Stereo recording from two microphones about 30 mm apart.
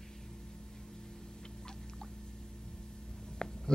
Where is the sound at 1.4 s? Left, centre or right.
Left.